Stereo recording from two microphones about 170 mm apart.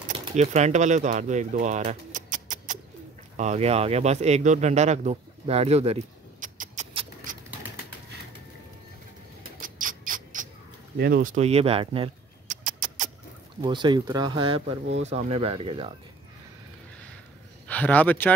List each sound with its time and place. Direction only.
0.2 s speech: 40° right (ahead or behind)
2.1 s rodents: 50° right (ahead or behind)
3.3 s speech: 40° right (ahead or behind)
9.4 s rodents: 55° right (ahead or behind)
11.0 s speech: 60° right (ahead or behind); by 12.1 s 30° right (ahead or behind)
12.4 s rodents: 50° right (ahead or behind)
13.6 s speech: 25° right (ahead or behind)
17.6 s speech: 10° left (ahead or behind)